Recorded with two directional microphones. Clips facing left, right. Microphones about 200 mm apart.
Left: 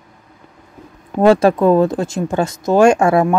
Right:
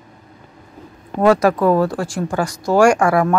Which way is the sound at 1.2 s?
25° left (ahead or behind).